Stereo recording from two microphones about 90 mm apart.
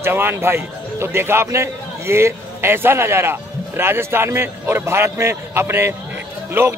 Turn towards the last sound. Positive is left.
turn(degrees=-25)  # may be behind; listen again after turning